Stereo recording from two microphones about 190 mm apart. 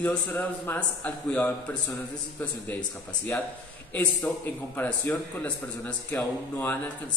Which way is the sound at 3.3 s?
5° left (ahead or behind).